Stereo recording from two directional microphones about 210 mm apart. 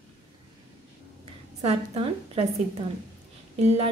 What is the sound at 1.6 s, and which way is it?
Speech, 30° right (ahead or behind).